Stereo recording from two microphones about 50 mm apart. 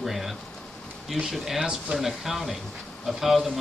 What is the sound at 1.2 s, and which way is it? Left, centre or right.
Speech, centre.